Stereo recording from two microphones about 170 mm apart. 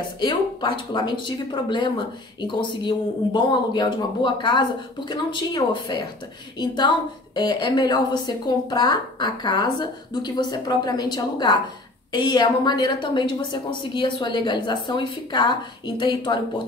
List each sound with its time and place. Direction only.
0.2 s a woman's voice: 25° left (ahead or behind)